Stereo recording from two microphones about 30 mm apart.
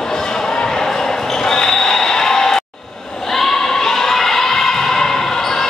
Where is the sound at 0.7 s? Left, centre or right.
Centre.